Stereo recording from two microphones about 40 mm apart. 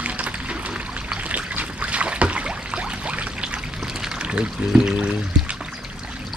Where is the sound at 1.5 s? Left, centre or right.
Right; by 4.2 s centre.